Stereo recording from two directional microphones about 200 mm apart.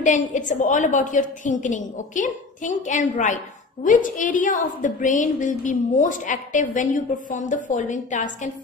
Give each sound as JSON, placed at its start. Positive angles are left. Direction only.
{"t": 0.0, "sound": "a woman's voice", "side_deg": 40}